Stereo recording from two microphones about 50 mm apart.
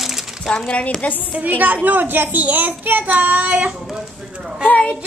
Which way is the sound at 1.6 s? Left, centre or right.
Right.